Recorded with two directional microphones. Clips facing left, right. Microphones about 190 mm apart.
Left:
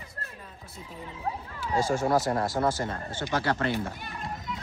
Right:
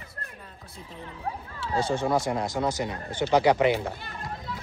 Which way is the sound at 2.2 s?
20° right (ahead or behind).